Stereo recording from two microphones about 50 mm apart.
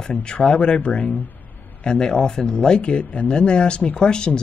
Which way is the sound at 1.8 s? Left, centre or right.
Centre.